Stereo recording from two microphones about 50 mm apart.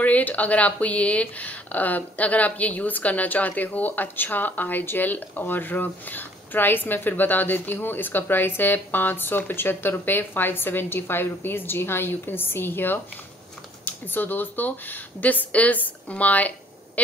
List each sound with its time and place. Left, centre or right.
0.0 s a woman's voice: left